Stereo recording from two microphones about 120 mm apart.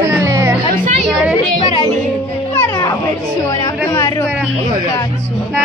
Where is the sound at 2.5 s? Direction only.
20° left (ahead or behind).